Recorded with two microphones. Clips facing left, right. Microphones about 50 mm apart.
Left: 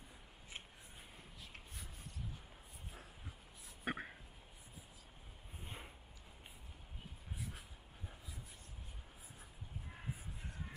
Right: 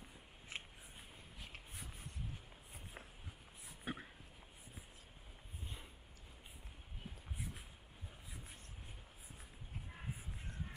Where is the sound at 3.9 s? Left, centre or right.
Left.